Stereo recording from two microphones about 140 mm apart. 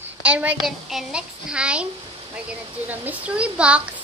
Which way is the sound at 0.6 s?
Centre (ahead or behind).